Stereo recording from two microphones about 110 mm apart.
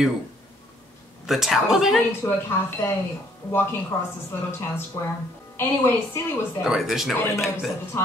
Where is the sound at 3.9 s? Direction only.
25° left (ahead or behind).